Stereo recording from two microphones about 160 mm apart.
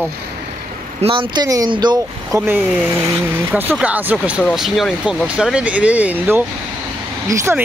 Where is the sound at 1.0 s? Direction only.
30° right (ahead or behind).